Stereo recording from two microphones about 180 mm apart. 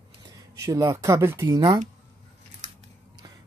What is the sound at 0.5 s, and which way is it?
Speech, 20° right (ahead or behind).